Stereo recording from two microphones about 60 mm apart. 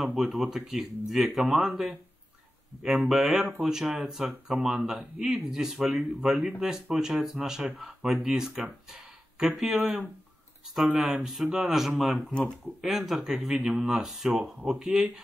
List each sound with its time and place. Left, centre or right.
0.0 s speech: centre
3.1 s speech: centre
13.7 s speech: centre
14.0 s speech: centre